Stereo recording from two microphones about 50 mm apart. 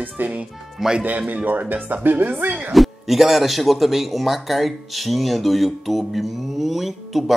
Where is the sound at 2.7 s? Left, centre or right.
Centre.